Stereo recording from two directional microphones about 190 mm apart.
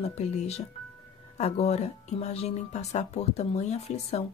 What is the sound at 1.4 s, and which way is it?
Speech, 35° left (ahead or behind).